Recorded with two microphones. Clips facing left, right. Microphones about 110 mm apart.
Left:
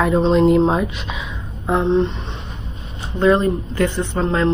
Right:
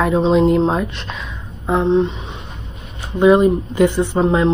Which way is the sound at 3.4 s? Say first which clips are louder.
Right 5 dB; 15° right (ahead or behind).